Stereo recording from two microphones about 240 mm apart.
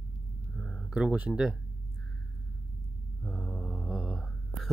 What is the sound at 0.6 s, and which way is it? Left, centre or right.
Speech, centre.